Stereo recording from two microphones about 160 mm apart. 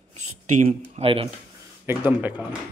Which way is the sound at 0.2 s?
50° right (ahead or behind).